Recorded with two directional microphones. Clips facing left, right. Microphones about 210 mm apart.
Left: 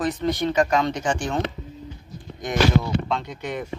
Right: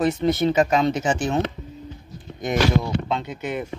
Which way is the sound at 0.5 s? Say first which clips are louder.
Even; 25° right (ahead or behind).